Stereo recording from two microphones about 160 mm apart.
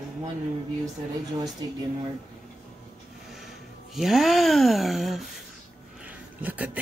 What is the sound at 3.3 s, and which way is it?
Speech, centre (ahead or behind).